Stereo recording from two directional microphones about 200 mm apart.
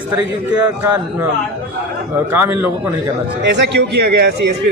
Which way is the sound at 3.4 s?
55° right (ahead or behind).